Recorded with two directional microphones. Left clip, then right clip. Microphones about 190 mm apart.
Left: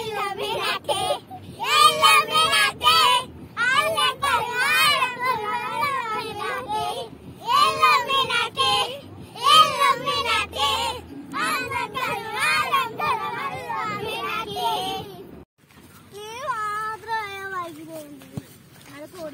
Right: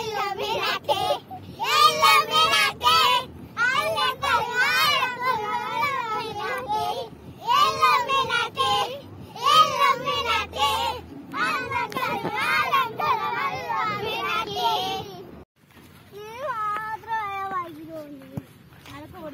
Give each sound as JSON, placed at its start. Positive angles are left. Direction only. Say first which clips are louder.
{"t": 0.5, "sound": "child singing", "louder": "right 1 dB", "side_deg": 0}
{"t": 12.3, "sound": "children playing", "louder": "left 1 dB", "side_deg": 0}
{"t": 14.8, "sound": "child singing", "louder": "even", "side_deg": 5}
{"t": 16.2, "sound": "baby cry", "louder": "left 1 dB", "side_deg": 25}
{"t": 16.8, "sound": "child singing", "louder": "left 1 dB", "side_deg": 5}